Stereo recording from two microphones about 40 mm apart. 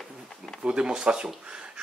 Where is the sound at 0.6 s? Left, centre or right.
Right.